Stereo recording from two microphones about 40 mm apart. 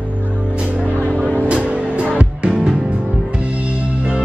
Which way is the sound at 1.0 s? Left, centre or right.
Left.